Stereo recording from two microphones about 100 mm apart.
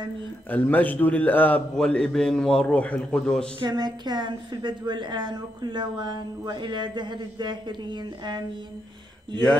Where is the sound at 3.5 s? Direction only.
45° right (ahead or behind).